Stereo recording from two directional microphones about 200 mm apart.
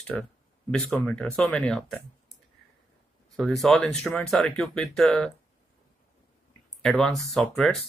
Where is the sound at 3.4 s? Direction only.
Centre (ahead or behind).